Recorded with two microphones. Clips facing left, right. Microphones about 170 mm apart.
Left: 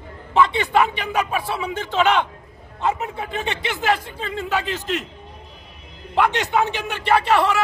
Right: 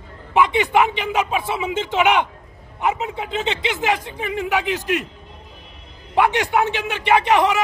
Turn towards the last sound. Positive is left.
turn(degrees=-15)  # may be behind; listen again after turning